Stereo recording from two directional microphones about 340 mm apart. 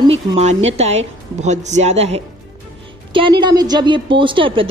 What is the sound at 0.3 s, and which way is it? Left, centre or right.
A woman's voice, centre.